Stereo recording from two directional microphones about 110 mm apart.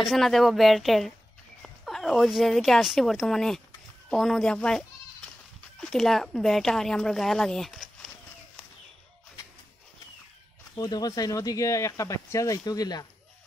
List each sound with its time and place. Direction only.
0.0 s speech: centre (ahead or behind)
10.8 s speech: 35° left (ahead or behind)